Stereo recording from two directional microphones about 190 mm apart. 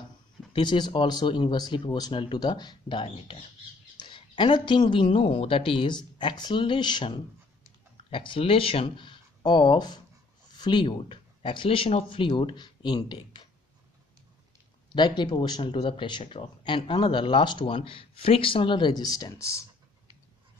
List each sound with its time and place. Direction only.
0.5 s speech: 25° left (ahead or behind)
14.9 s speech: 25° left (ahead or behind)